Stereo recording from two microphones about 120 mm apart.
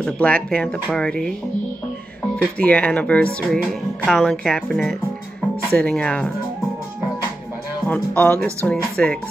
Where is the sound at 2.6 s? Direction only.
10° left (ahead or behind).